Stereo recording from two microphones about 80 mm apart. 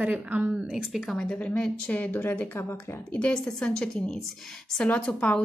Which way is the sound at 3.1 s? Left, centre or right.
Centre.